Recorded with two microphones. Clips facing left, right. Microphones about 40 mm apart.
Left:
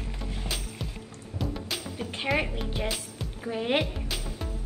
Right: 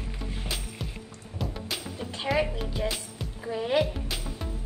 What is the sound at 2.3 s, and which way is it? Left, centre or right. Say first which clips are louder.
Music: right 2 dB; left.